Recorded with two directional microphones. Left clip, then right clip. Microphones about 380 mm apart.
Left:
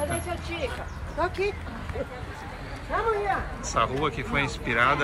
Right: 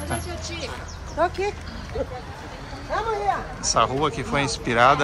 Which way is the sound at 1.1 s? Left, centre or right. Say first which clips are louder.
Right 4 dB; right.